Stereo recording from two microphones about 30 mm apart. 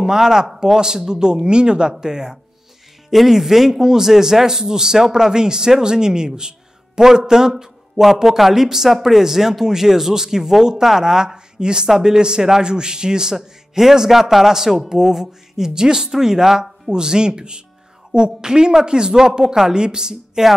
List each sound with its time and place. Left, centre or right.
0.0 s speech: centre
3.1 s a man's voice: centre
16.9 s speech: right